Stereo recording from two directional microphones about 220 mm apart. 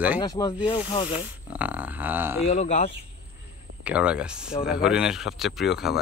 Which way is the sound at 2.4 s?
30° left (ahead or behind).